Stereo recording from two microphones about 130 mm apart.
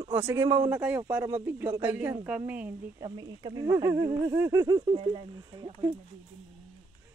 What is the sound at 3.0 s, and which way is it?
Speech, 35° right (ahead or behind).